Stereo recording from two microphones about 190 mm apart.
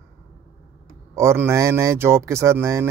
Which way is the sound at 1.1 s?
15° right (ahead or behind).